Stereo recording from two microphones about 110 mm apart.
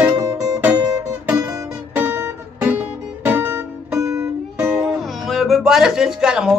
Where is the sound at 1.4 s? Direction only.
25° right (ahead or behind).